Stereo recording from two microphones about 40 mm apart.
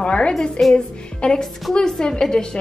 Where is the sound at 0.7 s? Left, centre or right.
Centre.